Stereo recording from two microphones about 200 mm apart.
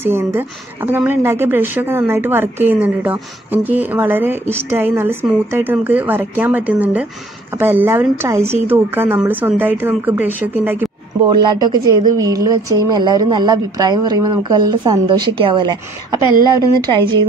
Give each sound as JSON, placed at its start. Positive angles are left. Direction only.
{"t": 0.0, "sound": "a woman's voice", "side_deg": -10}
{"t": 11.4, "sound": "a woman's voice", "side_deg": -20}